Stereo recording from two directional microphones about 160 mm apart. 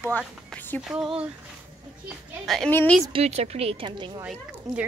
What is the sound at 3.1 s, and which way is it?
Speech, 40° right (ahead or behind).